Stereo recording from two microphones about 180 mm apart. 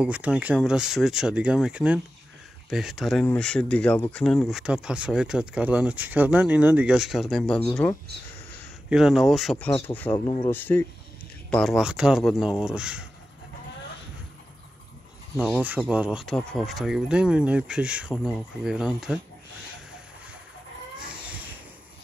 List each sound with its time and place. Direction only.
0.0 s speech: 5° right (ahead or behind)
8.9 s speech: centre (ahead or behind)
10.1 s speech: 25° left (ahead or behind)
10.5 s speech: 10° left (ahead or behind)
11.5 s speech: centre (ahead or behind)
15.8 s speech: 5° right (ahead or behind)